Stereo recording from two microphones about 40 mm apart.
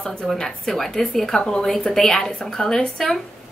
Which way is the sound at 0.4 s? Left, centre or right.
Centre.